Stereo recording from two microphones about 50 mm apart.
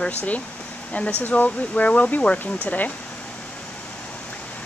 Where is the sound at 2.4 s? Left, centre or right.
Left.